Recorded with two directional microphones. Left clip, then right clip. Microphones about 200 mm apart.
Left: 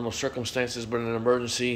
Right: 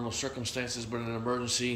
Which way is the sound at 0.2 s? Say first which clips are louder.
Left 7 dB; 15° left (ahead or behind).